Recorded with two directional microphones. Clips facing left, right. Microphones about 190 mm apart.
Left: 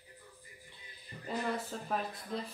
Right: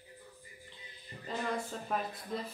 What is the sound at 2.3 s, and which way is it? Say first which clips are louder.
Speech: even; centre (ahead or behind).